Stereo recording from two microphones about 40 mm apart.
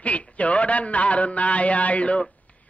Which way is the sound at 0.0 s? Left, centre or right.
Left.